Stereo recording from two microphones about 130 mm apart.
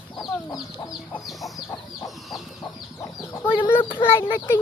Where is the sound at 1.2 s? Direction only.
Centre (ahead or behind).